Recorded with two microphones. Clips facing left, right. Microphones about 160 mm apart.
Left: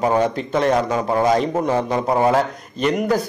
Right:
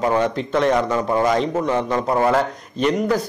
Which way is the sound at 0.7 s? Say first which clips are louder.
Even; 30° left (ahead or behind).